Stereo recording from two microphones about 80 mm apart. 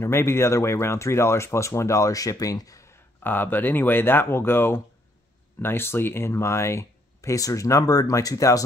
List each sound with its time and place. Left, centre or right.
0.0 s speech: left
3.2 s speech: left